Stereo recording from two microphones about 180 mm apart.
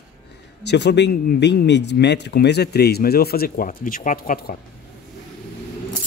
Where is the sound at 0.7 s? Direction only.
70° left (ahead or behind); by 4.6 s 55° left (ahead or behind).